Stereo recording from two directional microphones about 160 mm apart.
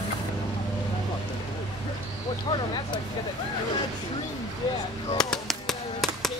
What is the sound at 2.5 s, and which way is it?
Speech, 30° left (ahead or behind).